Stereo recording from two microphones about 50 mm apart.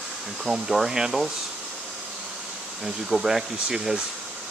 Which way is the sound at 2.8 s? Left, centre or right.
Centre.